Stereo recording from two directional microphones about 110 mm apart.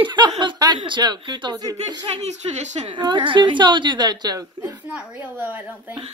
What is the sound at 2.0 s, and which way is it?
Speech, 80° right.